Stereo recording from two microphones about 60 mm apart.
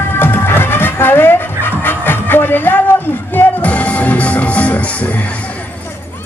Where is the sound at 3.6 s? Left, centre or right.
Left.